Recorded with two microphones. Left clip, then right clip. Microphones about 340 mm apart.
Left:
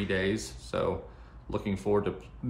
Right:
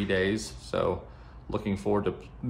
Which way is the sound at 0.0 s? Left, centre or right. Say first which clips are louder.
Right 3 dB; centre.